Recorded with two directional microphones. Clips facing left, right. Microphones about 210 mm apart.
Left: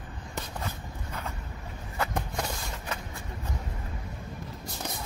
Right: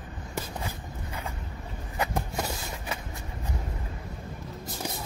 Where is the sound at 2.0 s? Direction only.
15° right (ahead or behind).